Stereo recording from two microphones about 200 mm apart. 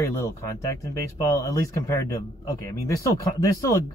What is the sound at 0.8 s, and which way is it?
Speech, 15° left (ahead or behind).